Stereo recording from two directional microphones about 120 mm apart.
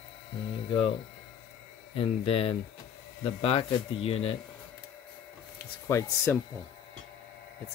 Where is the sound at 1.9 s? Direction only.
50° left (ahead or behind).